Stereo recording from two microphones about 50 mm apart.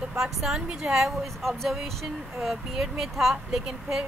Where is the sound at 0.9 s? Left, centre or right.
Centre.